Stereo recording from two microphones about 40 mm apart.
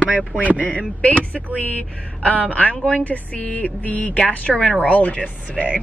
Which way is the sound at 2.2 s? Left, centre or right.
Left.